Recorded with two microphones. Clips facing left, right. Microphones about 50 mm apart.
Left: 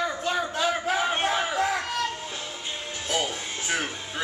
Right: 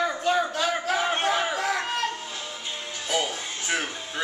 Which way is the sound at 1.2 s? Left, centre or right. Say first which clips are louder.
Right 1 dB; centre.